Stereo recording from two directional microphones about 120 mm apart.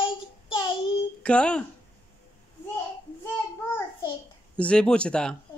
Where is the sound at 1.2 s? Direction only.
10° left (ahead or behind).